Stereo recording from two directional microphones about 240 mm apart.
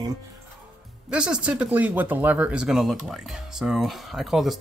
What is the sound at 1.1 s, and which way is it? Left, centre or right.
Speech, centre.